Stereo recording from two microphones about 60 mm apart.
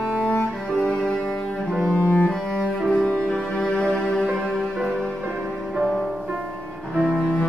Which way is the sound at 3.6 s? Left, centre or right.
Centre.